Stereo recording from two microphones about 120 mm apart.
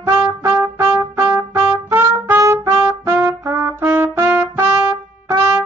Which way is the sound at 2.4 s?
25° right (ahead or behind).